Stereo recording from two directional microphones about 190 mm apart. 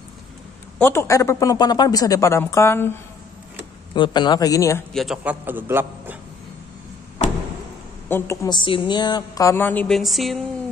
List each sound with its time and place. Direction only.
0.7 s a woman's voice: 15° left (ahead or behind)
3.9 s a man's voice: 25° left (ahead or behind)
4.9 s a man's voice: centre (ahead or behind)
8.1 s a woman's voice: 20° left (ahead or behind); by 10.4 s centre (ahead or behind)